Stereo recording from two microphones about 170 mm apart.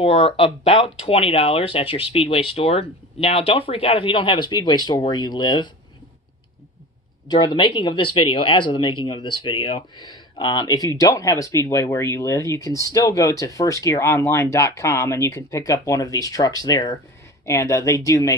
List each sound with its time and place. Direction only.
0.0 s speech: 35° left (ahead or behind)
7.2 s speech: 25° left (ahead or behind)